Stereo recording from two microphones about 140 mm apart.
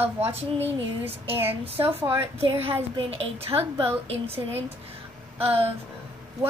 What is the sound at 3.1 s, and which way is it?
A woman's voice, 45° right (ahead or behind).